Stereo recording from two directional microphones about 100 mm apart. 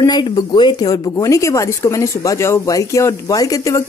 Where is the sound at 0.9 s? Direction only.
35° left (ahead or behind).